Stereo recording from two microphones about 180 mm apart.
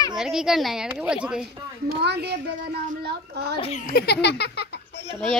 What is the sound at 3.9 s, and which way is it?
Speech, 65° left (ahead or behind).